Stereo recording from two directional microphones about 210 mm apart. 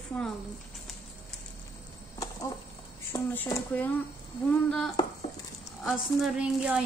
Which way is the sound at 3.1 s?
10° left (ahead or behind).